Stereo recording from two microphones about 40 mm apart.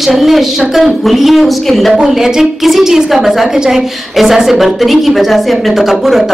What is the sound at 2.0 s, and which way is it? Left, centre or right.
Speech, centre.